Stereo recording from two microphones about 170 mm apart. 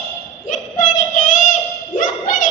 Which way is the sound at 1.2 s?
50° left (ahead or behind).